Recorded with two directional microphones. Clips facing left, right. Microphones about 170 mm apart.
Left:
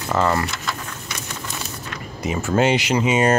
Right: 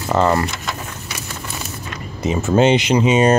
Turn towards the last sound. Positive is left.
turn(degrees=-20)  # may be behind; listen again after turning